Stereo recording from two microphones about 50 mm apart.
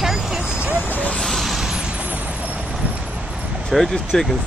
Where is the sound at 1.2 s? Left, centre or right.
Centre.